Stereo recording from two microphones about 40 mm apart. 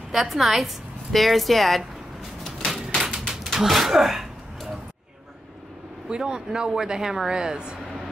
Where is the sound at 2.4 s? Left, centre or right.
Centre.